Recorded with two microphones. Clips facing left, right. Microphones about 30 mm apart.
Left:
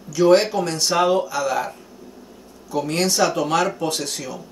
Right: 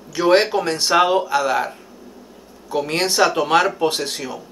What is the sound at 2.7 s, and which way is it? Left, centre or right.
Speech, right.